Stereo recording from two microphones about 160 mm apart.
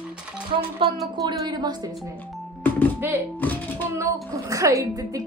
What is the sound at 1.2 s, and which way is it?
Speech, 25° right (ahead or behind).